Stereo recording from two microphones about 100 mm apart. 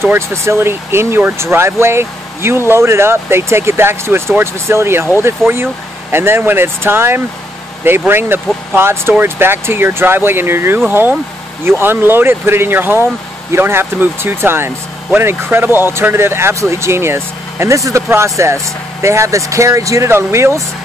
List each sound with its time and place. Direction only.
0.0 s speech: 25° right (ahead or behind)